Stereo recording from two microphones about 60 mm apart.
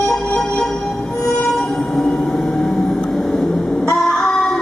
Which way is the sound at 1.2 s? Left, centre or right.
Centre.